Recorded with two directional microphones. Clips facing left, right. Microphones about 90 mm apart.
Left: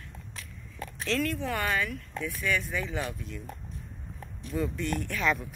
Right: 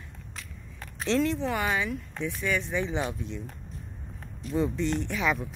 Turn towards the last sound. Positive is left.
turn(degrees=-15)  # may be behind; listen again after turning